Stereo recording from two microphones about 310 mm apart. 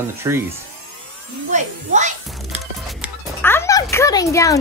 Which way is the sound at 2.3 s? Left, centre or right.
Centre.